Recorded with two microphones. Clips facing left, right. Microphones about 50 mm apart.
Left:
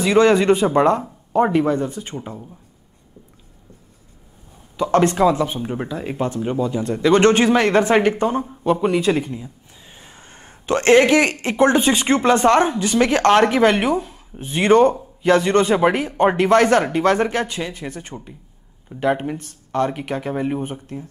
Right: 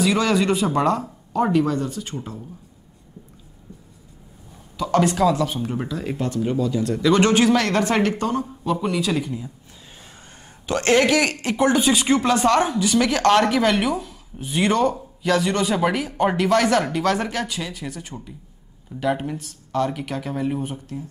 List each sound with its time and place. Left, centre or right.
0.1 s speech: left
4.7 s speech: left
7.4 s speech: left
10.4 s speech: left
14.4 s speech: left
18.9 s speech: left